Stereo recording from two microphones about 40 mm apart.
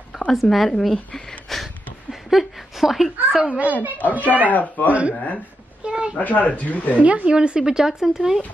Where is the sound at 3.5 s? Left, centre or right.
Right.